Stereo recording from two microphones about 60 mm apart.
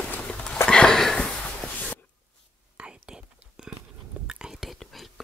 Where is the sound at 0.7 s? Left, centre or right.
Centre.